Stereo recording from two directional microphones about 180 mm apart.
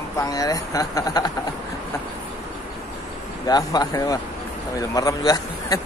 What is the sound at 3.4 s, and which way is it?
A man's voice, 20° left (ahead or behind).